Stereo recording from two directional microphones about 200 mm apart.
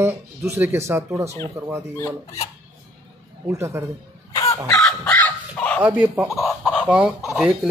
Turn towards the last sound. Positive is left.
turn(degrees=-5)  # may be behind; listen again after turning